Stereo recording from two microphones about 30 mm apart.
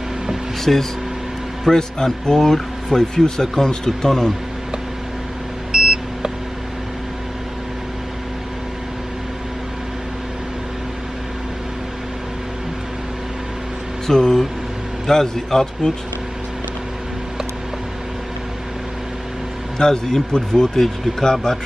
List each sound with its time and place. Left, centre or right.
0.7 s speech: centre
1.7 s speech: left
5.7 s beep: right
14.0 s speech: centre
19.8 s speech: centre